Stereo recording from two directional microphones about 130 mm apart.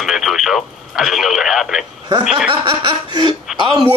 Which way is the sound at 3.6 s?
40° right (ahead or behind).